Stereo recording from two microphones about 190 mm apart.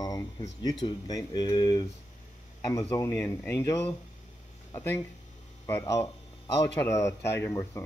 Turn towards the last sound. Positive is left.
turn(degrees=15)  # may be behind; listen again after turning